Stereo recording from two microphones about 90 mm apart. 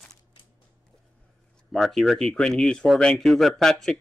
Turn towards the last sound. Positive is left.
turn(degrees=5)  # may be behind; listen again after turning